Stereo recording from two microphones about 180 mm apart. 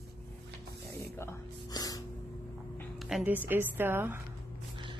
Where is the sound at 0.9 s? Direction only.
15° left (ahead or behind).